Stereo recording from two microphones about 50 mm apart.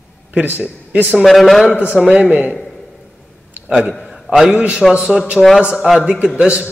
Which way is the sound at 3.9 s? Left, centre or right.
Centre.